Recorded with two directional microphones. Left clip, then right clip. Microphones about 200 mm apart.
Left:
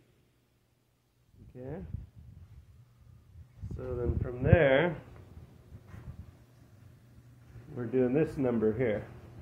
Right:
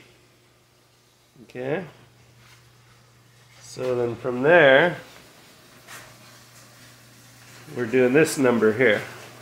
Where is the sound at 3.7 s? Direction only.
20° right (ahead or behind).